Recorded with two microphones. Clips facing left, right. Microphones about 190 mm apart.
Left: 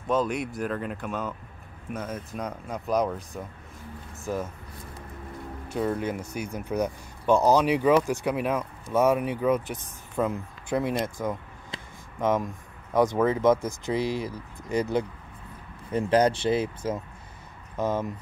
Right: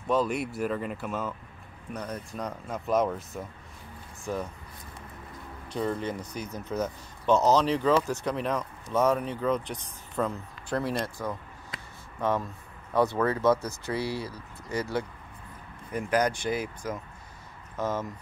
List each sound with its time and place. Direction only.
0.1 s speech: centre (ahead or behind)
5.7 s speech: 5° left (ahead or behind)
11.7 s a sound: 20° left (ahead or behind)
13.2 s speech: 20° left (ahead or behind)